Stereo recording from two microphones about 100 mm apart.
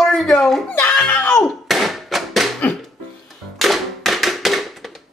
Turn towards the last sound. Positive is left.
turn(degrees=0)  # may be behind; listen again after turning